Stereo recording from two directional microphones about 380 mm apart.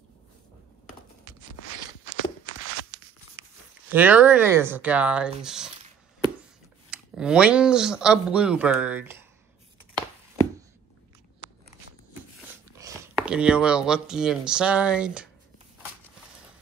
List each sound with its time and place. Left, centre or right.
2.2 s walk: left
3.9 s speech: centre
6.9 s speech: centre
9.9 s chopping: centre
12.7 s speech: centre